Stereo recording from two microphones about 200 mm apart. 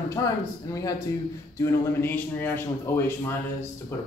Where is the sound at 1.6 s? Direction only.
10° left (ahead or behind).